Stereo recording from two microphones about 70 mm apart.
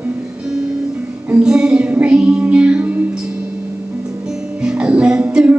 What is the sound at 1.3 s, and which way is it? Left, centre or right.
Music, centre.